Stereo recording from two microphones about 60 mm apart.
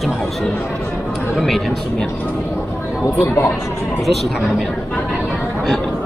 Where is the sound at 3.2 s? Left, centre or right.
Left.